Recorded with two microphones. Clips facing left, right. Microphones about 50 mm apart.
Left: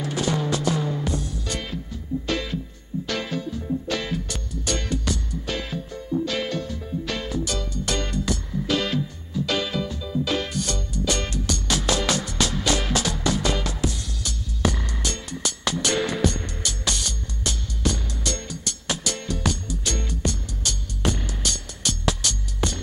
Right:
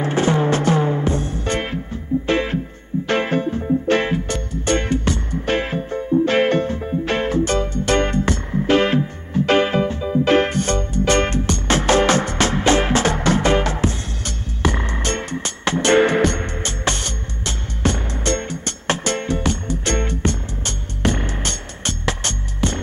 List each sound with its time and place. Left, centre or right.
0.0 s music: right